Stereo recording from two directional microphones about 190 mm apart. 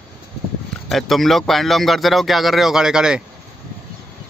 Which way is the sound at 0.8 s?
Centre (ahead or behind).